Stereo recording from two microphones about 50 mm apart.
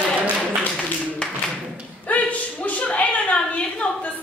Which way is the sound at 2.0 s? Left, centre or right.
Left.